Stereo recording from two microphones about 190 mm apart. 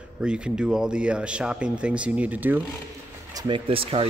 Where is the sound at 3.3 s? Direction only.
25° right (ahead or behind).